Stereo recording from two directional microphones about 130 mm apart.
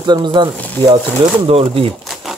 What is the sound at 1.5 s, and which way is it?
Speech, 50° right (ahead or behind).